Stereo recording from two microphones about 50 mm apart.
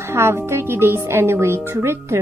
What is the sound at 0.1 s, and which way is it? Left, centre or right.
Speech, right.